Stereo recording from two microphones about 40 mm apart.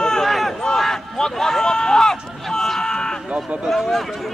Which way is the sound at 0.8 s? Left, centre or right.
Centre.